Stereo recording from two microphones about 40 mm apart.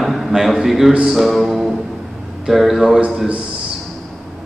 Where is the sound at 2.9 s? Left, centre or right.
Right.